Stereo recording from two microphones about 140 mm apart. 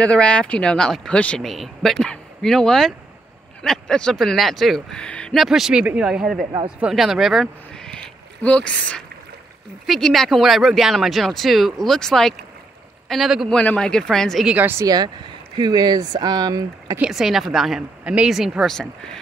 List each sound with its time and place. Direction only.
0.0 s speech: 10° left (ahead or behind)
14.5 s speech: 15° right (ahead or behind)
14.9 s speech: 30° right (ahead or behind)
17.0 s speech: centre (ahead or behind)